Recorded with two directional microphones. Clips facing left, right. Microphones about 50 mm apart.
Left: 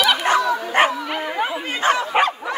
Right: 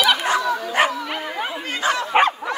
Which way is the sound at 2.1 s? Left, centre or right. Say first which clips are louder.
Right 1 dB; right.